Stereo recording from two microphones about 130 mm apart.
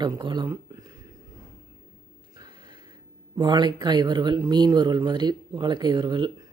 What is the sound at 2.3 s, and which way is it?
Speech, 35° right (ahead or behind).